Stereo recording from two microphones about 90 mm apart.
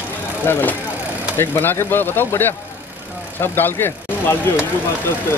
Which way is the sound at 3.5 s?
25° left (ahead or behind).